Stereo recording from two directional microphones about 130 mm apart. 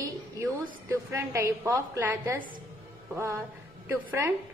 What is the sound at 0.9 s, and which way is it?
A woman's voice, 25° right (ahead or behind).